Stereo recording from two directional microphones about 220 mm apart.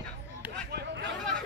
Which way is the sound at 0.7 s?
50° right (ahead or behind).